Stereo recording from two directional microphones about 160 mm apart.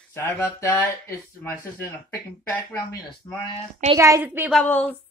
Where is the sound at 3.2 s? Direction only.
20° left (ahead or behind).